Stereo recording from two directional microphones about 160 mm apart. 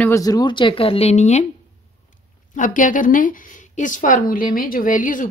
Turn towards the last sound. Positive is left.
turn(degrees=55)  # may be behind; listen again after turning